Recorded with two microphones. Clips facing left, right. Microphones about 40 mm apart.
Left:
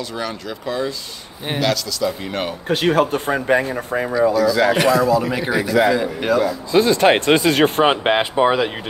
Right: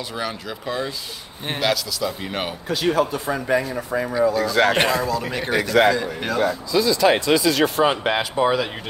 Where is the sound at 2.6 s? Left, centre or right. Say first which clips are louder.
Left 4 dB; left.